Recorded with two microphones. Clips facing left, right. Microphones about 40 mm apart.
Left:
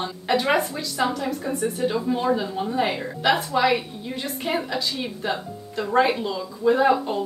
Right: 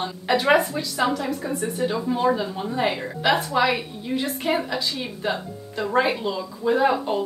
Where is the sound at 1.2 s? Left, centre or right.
Centre.